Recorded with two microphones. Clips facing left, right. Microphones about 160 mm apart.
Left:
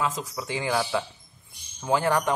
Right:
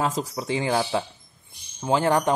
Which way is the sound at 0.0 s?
35° right (ahead or behind).